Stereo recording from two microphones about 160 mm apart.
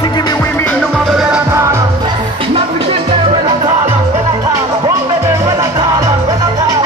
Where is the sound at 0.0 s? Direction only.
25° left (ahead or behind).